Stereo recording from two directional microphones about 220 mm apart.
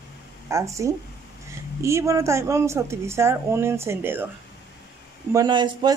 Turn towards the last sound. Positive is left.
turn(degrees=-20)  # may be behind; listen again after turning